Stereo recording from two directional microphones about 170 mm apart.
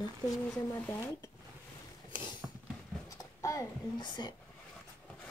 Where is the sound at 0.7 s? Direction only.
20° left (ahead or behind).